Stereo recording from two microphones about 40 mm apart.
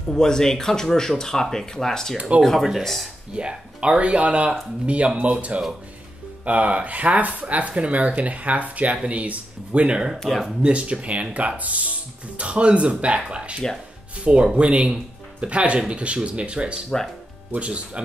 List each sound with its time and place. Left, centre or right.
0.1 s speech: centre
2.1 s speech: right
2.4 s speech: centre
3.3 s speech: right